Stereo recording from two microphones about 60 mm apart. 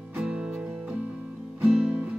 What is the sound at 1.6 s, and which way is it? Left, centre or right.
Music, centre.